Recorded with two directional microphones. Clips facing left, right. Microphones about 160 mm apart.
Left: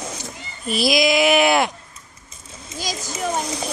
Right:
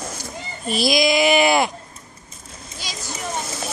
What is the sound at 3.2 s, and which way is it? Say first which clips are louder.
Speech: left 5 dB; 35° left (ahead or behind).